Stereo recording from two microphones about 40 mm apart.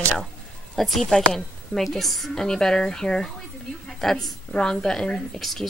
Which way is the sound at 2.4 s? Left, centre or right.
Centre.